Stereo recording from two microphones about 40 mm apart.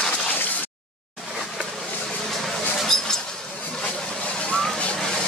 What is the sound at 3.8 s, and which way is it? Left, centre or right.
Vehicle, left.